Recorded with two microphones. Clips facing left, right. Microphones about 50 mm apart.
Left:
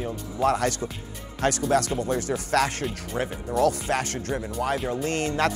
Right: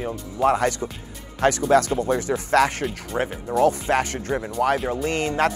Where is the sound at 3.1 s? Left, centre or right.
Centre.